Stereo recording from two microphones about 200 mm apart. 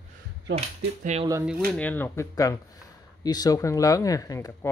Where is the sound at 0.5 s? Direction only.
30° right (ahead or behind).